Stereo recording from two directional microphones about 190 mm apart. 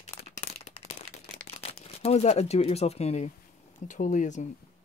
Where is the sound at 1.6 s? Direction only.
30° left (ahead or behind).